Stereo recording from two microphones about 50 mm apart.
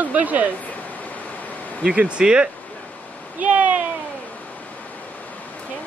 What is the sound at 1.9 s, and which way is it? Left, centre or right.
Speech, centre.